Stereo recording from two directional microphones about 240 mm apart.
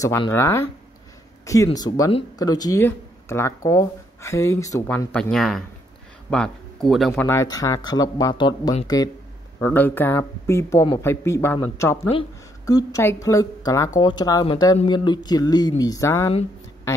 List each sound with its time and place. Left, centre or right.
0.0 s a woman's voice: centre